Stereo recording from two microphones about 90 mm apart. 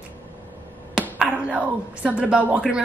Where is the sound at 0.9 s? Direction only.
10° right (ahead or behind).